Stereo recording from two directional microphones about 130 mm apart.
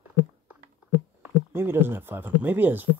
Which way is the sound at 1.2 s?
15° right (ahead or behind).